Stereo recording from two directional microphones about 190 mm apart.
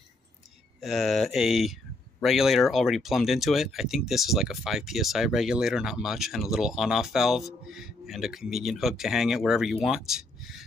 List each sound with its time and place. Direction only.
0.7 s speech: centre (ahead or behind)